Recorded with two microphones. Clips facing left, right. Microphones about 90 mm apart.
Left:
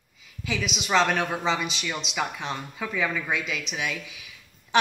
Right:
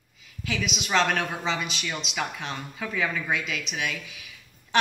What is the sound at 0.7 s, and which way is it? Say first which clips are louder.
A woman's voice: left 2 dB; 5° left (ahead or behind).